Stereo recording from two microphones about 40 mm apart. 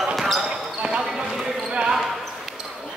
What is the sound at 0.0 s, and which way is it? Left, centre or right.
Basketball bounce, centre.